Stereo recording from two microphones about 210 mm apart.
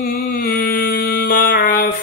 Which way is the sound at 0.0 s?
40° left (ahead or behind).